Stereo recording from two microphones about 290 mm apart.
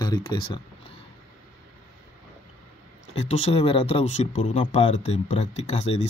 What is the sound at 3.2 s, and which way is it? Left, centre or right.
Speech, left.